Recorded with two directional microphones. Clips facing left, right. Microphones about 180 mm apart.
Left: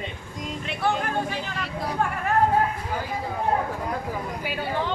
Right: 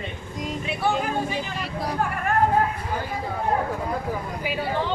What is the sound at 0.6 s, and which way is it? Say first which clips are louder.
Vehicle: right 1 dB; 5° right (ahead or behind).